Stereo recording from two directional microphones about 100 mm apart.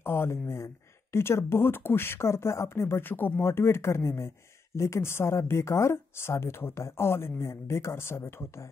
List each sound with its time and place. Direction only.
0.0 s speech: 25° left (ahead or behind)